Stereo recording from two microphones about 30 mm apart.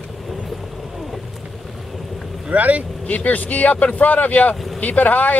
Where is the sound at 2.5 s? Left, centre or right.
Right.